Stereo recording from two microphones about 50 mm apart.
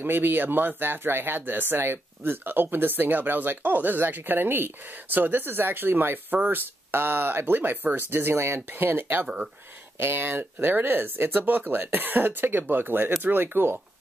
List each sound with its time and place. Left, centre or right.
0.0 s speech: right
6.9 s speech: right